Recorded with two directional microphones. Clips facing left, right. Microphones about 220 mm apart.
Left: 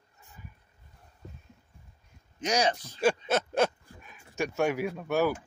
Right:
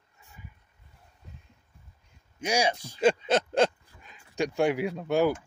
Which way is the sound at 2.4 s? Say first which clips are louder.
Even; 10° right (ahead or behind).